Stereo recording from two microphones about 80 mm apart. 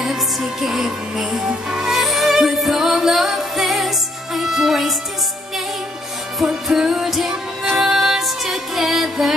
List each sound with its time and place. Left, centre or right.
0.0 s music: centre
6.4 s music: centre